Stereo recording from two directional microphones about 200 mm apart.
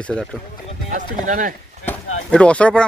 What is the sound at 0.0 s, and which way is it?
Speech, 5° left (ahead or behind).